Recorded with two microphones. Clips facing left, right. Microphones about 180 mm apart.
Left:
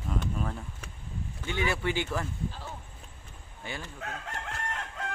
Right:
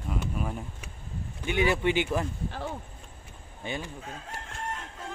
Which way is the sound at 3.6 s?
20° right (ahead or behind).